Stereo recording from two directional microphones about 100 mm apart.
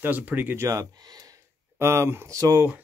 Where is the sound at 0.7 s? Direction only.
40° right (ahead or behind).